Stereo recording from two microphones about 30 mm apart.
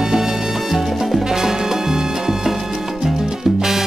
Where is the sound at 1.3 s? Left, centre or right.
Centre.